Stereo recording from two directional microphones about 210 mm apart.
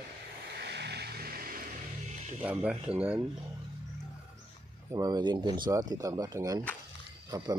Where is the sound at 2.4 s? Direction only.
5° right (ahead or behind).